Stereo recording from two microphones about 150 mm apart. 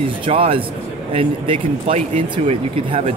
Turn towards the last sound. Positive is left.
turn(degrees=-45)  # may be behind; listen again after turning